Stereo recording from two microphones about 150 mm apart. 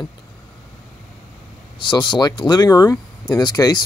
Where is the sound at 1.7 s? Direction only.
30° left (ahead or behind).